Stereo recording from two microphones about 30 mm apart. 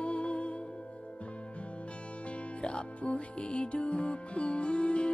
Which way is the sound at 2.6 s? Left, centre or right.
Left.